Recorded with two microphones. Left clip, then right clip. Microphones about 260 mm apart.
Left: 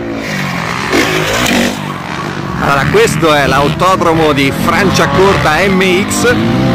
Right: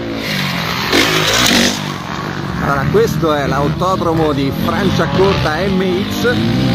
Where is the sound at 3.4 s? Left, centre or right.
Centre.